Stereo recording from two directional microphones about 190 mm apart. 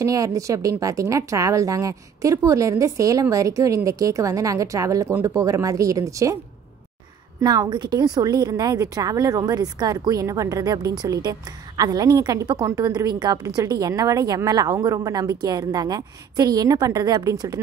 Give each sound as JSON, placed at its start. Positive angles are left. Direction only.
{"t": 0.0, "sound": "a woman's voice", "side_deg": -15}
{"t": 7.3, "sound": "a woman's voice", "side_deg": -20}